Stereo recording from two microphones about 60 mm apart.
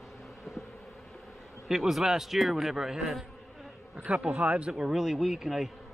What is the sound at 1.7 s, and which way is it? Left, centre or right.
A man's voice, centre.